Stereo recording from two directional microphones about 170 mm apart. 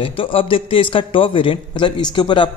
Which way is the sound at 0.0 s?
35° left (ahead or behind).